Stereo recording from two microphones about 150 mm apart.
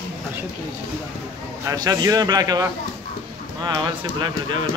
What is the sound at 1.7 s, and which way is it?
Speech, 25° right (ahead or behind).